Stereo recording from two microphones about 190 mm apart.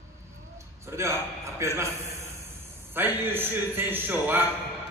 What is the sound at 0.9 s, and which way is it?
A man's voice, 15° right (ahead or behind).